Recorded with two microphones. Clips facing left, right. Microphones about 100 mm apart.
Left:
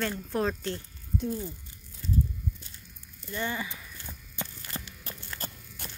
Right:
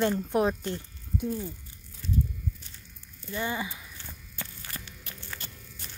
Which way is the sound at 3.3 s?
15° right (ahead or behind).